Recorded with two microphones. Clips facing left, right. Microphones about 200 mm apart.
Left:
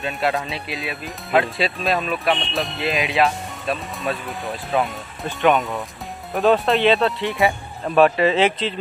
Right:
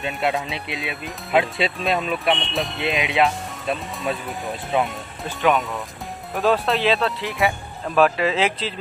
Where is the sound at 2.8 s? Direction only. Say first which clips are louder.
Left 1 dB; 20° right (ahead or behind).